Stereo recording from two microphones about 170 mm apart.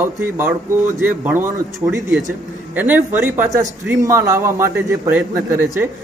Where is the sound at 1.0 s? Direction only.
10° right (ahead or behind).